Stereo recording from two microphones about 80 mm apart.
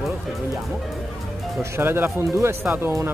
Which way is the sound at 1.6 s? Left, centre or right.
Right.